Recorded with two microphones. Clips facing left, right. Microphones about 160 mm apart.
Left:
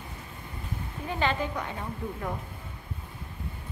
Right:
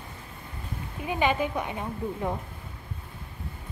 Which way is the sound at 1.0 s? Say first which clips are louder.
Right 3 dB; 15° right (ahead or behind).